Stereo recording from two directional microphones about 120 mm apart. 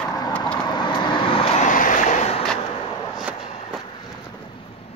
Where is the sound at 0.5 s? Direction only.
40° left (ahead or behind).